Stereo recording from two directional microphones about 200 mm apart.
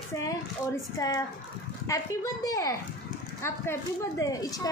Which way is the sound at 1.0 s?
15° left (ahead or behind).